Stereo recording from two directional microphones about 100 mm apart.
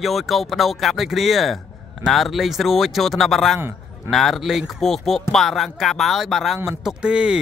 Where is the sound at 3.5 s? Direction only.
25° right (ahead or behind).